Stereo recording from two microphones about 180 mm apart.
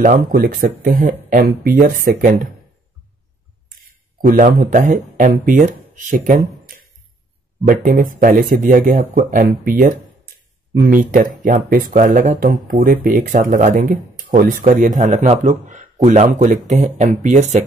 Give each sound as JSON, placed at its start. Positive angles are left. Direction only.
{"t": 0.0, "sound": "speech", "side_deg": -50}
{"t": 4.3, "sound": "speech", "side_deg": -50}